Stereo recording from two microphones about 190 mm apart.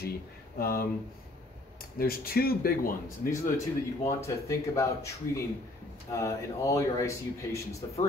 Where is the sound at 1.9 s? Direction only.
50° left (ahead or behind).